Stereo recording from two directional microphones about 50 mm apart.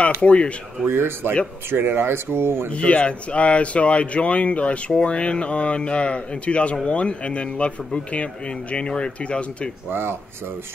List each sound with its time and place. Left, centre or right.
0.2 s speech: left
0.8 s speech: right
2.7 s speech: left
9.8 s speech: right